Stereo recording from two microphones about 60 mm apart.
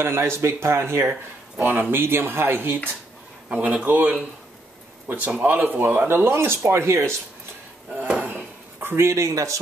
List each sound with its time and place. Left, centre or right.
0.0 s speech: right
1.6 s speech: right
3.4 s speech: right
8.1 s a sound: right
8.8 s speech: right